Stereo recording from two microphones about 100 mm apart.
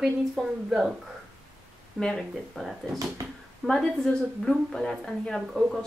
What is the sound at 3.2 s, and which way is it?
Speech, 35° right (ahead or behind).